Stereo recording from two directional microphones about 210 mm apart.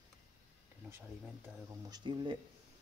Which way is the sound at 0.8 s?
10° right (ahead or behind).